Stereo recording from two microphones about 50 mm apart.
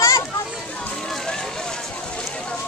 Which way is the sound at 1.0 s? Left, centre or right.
Centre.